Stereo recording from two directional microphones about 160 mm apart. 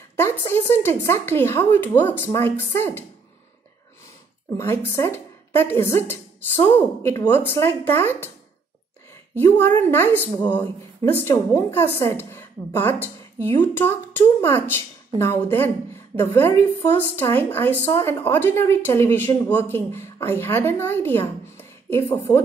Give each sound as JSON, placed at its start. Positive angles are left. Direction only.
{"t": 0.1, "sound": "speech", "side_deg": 15}
{"t": 4.6, "sound": "speech", "side_deg": 15}
{"t": 9.4, "sound": "speech", "side_deg": 15}